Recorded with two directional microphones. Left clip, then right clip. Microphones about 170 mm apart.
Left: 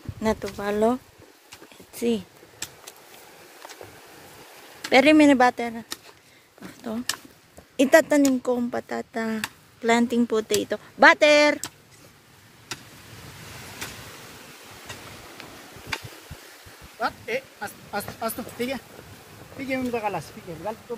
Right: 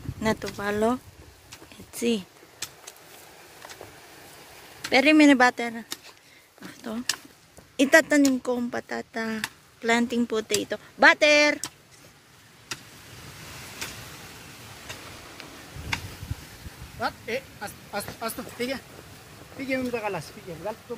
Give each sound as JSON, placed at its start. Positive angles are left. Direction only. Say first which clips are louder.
{"t": 0.2, "sound": "speech", "louder": "left 1 dB", "side_deg": 5}
{"t": 2.0, "sound": "speech", "louder": "left 1 dB", "side_deg": 0}
{"t": 4.8, "sound": "a sound", "louder": "left 3 dB", "side_deg": 30}
{"t": 5.1, "sound": "speech", "louder": "left 1 dB", "side_deg": 10}
{"t": 6.6, "sound": "a sound", "louder": "left 2 dB", "side_deg": 10}
{"t": 7.7, "sound": "speech", "louder": "left 1 dB", "side_deg": 10}
{"t": 13.8, "sound": "vehicle", "louder": "even", "side_deg": 40}
{"t": 14.9, "sound": "a sound", "louder": "even", "side_deg": 60}
{"t": 15.9, "sound": "tick-tock", "louder": "right 1 dB", "side_deg": 60}
{"t": 17.0, "sound": "speech", "louder": "left 2 dB", "side_deg": 35}